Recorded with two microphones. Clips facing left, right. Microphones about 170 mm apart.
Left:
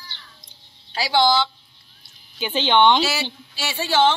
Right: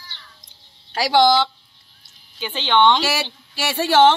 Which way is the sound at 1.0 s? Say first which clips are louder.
Right 3 dB; 80° right.